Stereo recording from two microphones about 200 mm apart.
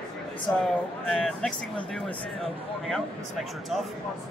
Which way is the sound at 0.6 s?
Centre (ahead or behind).